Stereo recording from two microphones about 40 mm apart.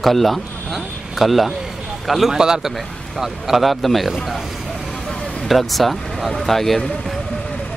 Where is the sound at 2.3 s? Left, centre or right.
Centre.